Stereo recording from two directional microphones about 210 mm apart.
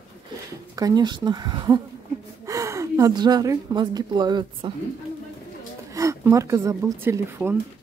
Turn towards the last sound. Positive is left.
turn(degrees=-10)  # may be behind; listen again after turning